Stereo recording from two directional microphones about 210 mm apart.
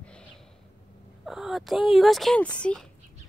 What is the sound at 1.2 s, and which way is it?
Speech, centre (ahead or behind).